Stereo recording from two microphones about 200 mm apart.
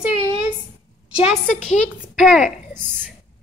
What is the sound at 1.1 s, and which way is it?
A child's voice, centre (ahead or behind).